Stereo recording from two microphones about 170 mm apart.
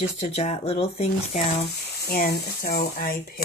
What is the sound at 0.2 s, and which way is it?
Speech, 40° left (ahead or behind).